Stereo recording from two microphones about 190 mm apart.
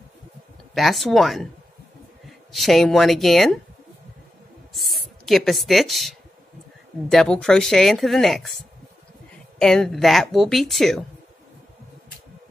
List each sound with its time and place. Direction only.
0.7 s a woman's voice: centre (ahead or behind)
4.7 s a woman's voice: centre (ahead or behind)
9.6 s a woman's voice: 5° left (ahead or behind)